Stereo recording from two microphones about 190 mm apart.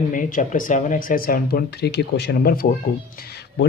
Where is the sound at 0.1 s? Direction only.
45° left (ahead or behind).